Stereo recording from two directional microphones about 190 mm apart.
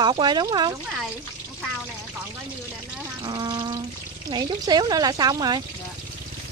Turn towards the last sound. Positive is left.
turn(degrees=-20)  # may be behind; listen again after turning